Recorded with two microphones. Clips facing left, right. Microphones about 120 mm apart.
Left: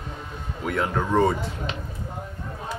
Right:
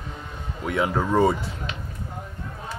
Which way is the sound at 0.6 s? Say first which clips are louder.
Right 1 dB; centre (ahead or behind).